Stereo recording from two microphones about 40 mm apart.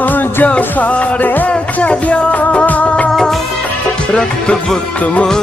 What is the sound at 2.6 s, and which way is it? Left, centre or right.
Music of bollywood, left.